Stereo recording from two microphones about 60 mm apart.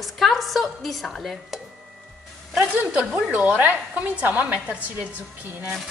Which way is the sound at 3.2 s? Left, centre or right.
Right.